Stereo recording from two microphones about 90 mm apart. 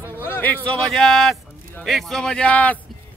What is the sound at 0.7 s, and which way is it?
A man's voice, centre (ahead or behind).